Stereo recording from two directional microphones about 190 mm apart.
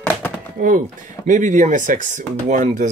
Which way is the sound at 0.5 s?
45° right (ahead or behind).